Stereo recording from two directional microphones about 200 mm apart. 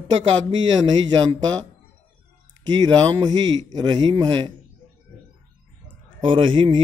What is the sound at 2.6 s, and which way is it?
A man's voice, 20° right (ahead or behind).